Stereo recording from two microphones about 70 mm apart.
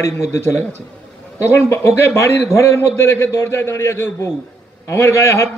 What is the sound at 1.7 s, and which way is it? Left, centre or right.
A man's voice, left.